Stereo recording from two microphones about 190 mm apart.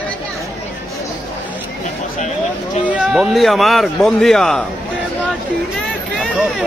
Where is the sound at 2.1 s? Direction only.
40° left (ahead or behind).